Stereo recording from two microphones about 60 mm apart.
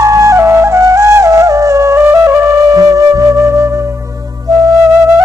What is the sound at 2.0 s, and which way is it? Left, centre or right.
Music, right.